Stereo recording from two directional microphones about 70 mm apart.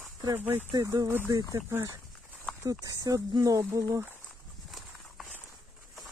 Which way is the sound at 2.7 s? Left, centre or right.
Right.